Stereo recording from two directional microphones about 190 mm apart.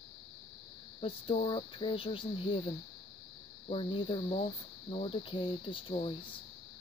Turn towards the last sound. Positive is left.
turn(degrees=25)  # may be behind; listen again after turning